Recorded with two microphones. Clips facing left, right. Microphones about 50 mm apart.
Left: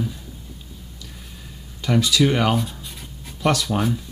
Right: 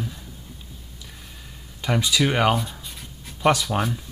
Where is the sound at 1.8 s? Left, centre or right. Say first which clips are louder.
Left 3 dB; centre.